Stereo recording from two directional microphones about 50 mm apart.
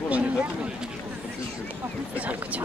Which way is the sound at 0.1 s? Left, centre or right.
Right.